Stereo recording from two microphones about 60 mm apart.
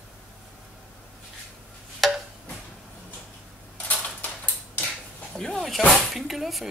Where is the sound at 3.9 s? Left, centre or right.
Left.